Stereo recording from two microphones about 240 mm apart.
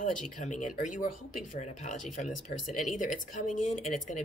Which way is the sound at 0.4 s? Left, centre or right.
Left.